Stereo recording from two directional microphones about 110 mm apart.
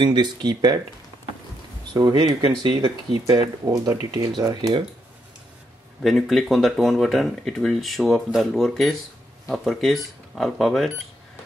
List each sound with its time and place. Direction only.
0.0 s speech: 40° right (ahead or behind)
2.0 s speech: 35° right (ahead or behind)
6.0 s speech: centre (ahead or behind)